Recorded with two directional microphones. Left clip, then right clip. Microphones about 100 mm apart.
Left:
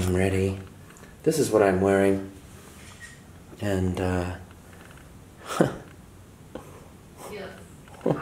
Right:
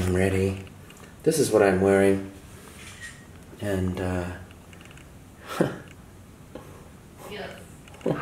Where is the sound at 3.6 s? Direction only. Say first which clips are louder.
Left 1 dB; 50° left (ahead or behind).